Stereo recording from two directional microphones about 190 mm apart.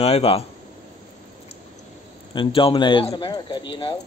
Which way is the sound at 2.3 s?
25° left (ahead or behind).